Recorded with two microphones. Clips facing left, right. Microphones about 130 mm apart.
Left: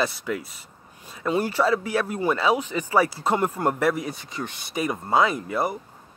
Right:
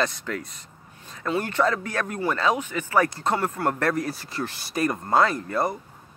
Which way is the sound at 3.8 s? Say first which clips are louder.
Left 1 dB; centre (ahead or behind).